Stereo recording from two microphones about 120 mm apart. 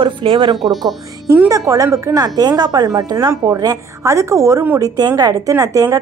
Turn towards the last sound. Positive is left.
turn(degrees=-25)  # may be behind; listen again after turning